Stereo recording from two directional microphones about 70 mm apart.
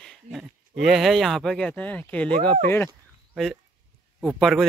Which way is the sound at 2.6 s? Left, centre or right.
Left.